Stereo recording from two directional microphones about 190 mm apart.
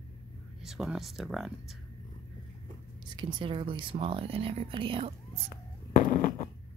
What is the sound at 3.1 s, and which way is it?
Speech, 25° right (ahead or behind).